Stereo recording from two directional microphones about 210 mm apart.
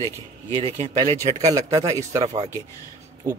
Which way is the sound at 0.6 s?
20° right (ahead or behind).